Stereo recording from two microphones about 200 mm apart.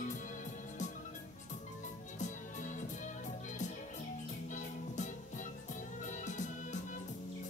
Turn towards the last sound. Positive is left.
turn(degrees=35)  # may be behind; listen again after turning